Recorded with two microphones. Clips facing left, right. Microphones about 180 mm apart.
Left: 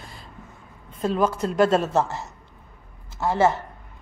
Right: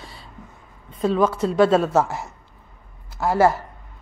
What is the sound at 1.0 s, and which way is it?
Speech, centre (ahead or behind).